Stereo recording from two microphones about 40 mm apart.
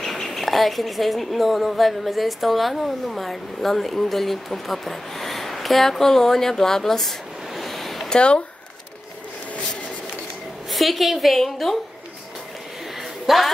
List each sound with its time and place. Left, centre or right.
0.0 s a woman's voice: centre
8.1 s speech: left
10.7 s a woman's voice: centre
13.3 s a woman's voice: centre